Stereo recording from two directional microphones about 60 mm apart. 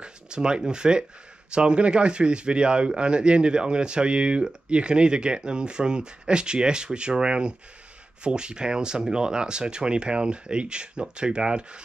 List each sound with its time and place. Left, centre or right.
0.0 s speech: centre